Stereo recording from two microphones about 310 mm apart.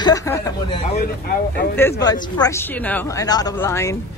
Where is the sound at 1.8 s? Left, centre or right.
Centre.